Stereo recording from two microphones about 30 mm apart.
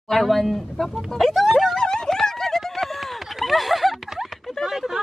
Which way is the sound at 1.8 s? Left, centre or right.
Left.